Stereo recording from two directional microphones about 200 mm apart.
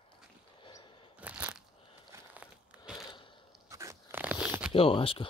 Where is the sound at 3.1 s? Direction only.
25° left (ahead or behind).